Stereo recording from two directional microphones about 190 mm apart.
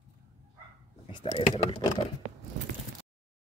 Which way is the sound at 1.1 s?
30° left (ahead or behind).